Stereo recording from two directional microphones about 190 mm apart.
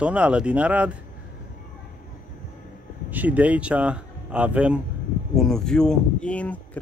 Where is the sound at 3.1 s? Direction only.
10° right (ahead or behind).